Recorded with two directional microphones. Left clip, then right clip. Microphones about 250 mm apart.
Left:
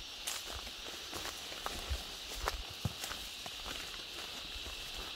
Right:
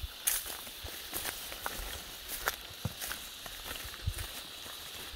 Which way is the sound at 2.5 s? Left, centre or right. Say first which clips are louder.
Right 4 dB; right.